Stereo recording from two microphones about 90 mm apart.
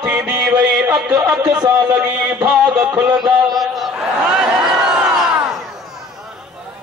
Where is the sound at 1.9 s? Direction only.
20° right (ahead or behind).